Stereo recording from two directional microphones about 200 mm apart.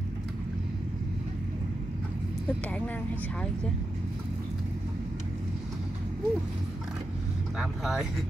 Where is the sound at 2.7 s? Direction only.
5° left (ahead or behind).